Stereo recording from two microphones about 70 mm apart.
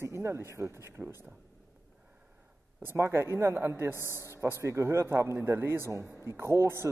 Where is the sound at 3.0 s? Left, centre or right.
Right.